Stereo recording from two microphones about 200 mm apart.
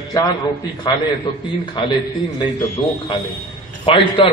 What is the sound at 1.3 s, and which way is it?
Speech, 25° left (ahead or behind).